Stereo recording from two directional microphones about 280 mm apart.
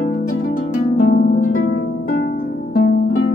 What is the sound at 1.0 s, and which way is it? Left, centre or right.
Harp, left.